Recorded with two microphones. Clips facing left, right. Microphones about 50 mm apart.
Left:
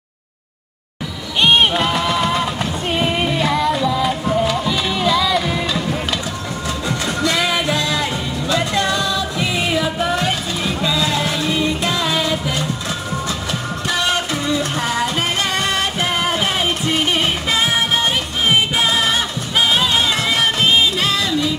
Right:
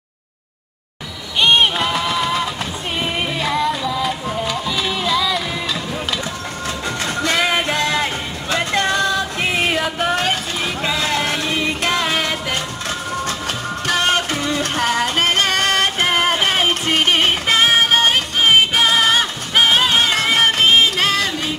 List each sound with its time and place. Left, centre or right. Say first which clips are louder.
1.4 s music: left 1 dB; centre
6.9 s music: left 1 dB; right
13.8 s music: right 2 dB; right